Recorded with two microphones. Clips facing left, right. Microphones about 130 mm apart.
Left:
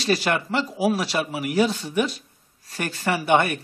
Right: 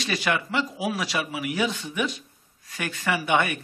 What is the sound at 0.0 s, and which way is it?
Speech, 35° left (ahead or behind).